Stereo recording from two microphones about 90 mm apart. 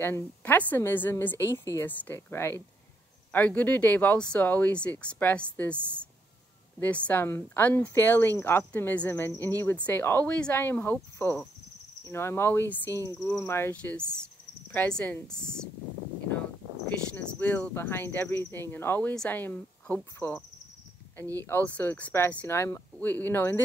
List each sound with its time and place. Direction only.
0.0 s speech: 25° left (ahead or behind)
6.8 s speech: 20° left (ahead or behind)
13.7 s speech: 10° left (ahead or behind)
17.1 s speech: 15° left (ahead or behind)
21.5 s speech: 20° left (ahead or behind)
22.5 s speech: 30° left (ahead or behind)